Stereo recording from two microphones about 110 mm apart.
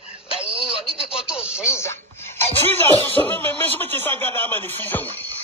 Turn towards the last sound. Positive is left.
turn(degrees=20)  # may be behind; listen again after turning